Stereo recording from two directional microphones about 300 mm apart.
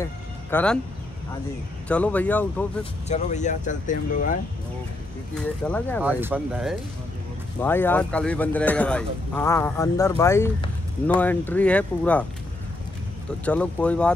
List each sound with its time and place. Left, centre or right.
0.0 s music: centre
1.9 s speech: centre
3.1 s speech: left
5.3 s speech: centre
6.0 s speech: centre
13.5 s speech: centre